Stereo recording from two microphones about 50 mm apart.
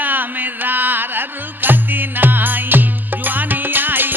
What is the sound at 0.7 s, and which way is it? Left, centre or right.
Music, right.